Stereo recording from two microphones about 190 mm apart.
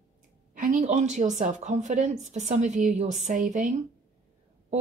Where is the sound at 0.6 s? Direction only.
40° right (ahead or behind).